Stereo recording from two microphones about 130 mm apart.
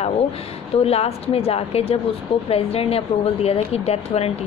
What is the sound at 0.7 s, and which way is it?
Speech, 50° left (ahead or behind).